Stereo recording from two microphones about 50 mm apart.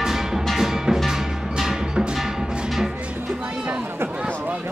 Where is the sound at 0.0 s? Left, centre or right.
Centre.